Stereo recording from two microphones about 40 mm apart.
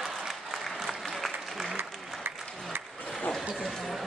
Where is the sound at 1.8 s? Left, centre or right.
Right.